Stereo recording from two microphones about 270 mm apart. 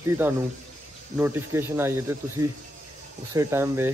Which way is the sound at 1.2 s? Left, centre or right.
Centre.